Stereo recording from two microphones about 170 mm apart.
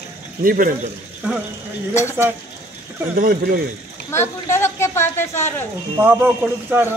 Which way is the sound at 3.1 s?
55° right (ahead or behind).